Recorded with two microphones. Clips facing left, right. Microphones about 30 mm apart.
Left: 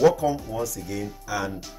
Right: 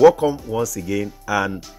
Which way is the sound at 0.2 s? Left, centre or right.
Right.